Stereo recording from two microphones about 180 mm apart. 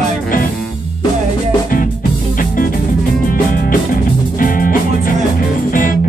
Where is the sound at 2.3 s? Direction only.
50° left (ahead or behind).